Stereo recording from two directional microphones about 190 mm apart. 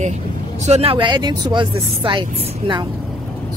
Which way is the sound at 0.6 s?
35° right (ahead or behind).